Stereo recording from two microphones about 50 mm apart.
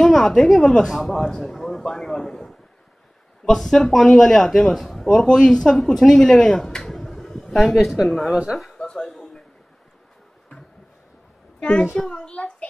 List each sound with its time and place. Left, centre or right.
0.0 s a man's voice: centre
8.7 s a sound: centre
12.0 s a child's voice: centre